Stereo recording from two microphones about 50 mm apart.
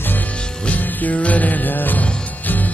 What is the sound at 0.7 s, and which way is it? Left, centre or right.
Music, left.